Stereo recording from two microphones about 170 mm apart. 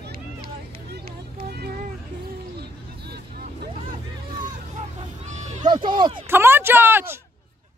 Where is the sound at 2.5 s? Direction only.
70° right (ahead or behind); by 4.6 s 50° right (ahead or behind).